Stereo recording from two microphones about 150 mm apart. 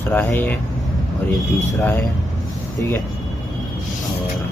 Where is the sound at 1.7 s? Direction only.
15° left (ahead or behind).